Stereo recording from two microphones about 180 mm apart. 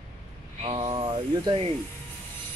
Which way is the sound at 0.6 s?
30° right (ahead or behind).